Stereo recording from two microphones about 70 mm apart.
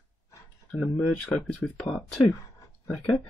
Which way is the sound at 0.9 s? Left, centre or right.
Centre.